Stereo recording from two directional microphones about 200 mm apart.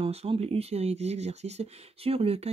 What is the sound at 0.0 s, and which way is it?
Speech, 30° right (ahead or behind).